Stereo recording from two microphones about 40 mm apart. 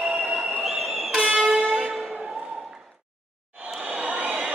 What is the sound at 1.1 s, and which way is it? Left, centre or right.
Vehicle, right.